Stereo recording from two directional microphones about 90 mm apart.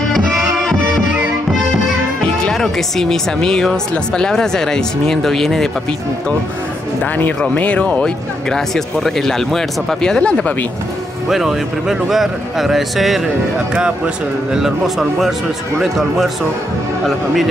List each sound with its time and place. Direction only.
0.1 s music: centre (ahead or behind)
2.4 s speech: 5° left (ahead or behind)
7.0 s speech: 20° left (ahead or behind)
11.2 s speech: 5° right (ahead or behind)